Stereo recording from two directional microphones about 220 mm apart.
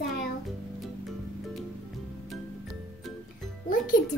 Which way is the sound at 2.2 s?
Centre (ahead or behind).